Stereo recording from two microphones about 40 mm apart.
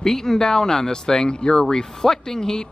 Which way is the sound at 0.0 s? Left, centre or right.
Centre.